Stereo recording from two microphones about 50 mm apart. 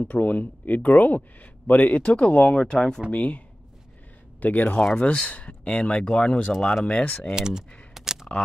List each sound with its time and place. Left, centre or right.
0.0 s speech: left
2.6 s speech: centre
3.1 s speech: left
7.3 s speech: centre
7.9 s a sound: centre